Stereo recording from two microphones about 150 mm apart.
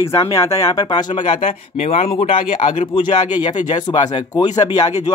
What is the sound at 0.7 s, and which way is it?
Speech, 30° left (ahead or behind).